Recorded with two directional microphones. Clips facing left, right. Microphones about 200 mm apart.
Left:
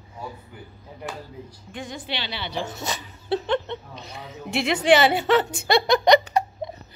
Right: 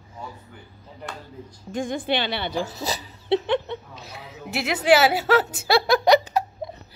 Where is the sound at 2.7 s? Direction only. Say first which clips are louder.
Right 2 dB; 35° right (ahead or behind).